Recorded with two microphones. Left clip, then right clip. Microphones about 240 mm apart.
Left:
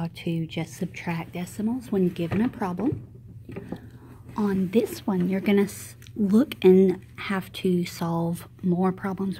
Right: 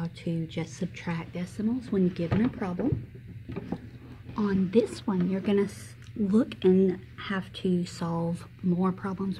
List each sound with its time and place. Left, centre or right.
0.0 s speech: left
4.4 s speech: left